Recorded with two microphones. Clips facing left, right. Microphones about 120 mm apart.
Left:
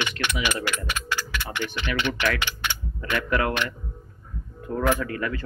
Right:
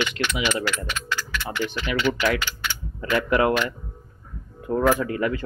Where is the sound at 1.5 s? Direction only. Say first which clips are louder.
Right 4 dB; 20° left (ahead or behind).